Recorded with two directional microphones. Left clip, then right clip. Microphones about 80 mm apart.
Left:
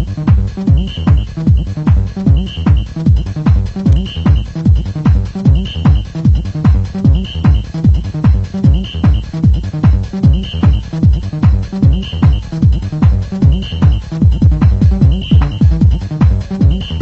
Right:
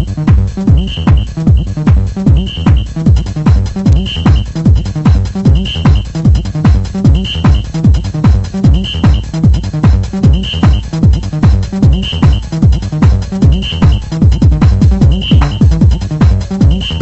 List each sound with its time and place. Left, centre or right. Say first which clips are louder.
0.2 s music: right 3 dB; left